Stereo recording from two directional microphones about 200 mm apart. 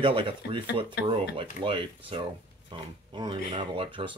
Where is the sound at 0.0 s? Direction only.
25° right (ahead or behind).